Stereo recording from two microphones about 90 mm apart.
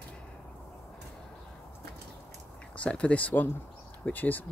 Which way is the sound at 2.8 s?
15° left (ahead or behind).